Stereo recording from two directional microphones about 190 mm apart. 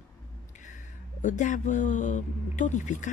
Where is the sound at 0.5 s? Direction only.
40° left (ahead or behind).